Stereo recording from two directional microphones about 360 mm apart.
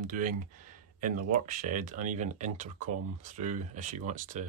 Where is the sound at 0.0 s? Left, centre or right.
Right.